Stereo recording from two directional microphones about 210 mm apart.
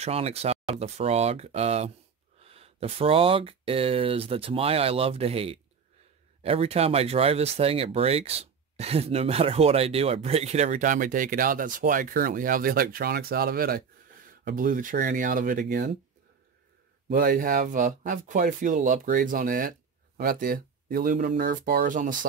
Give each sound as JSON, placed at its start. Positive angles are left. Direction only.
{"t": 0.0, "sound": "speech", "side_deg": -30}
{"t": 17.1, "sound": "speech", "side_deg": -45}